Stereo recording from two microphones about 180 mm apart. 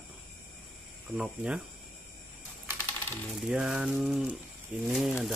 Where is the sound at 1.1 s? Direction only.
5° right (ahead or behind).